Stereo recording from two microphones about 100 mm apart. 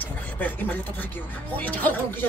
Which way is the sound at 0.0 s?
20° left (ahead or behind).